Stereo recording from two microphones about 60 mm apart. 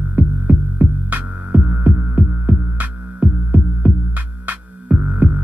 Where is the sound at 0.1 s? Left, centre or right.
Right.